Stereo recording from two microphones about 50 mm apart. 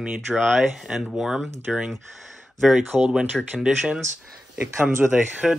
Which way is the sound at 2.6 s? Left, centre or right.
Centre.